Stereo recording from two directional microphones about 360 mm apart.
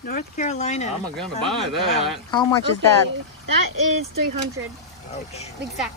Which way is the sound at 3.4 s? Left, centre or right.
Right.